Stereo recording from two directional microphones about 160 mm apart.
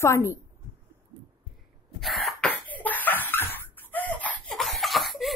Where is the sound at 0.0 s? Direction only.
15° left (ahead or behind).